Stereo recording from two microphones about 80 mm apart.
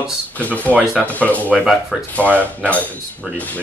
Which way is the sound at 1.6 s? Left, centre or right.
Centre.